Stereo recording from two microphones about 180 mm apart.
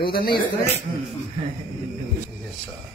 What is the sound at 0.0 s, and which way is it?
Speech, 55° left (ahead or behind).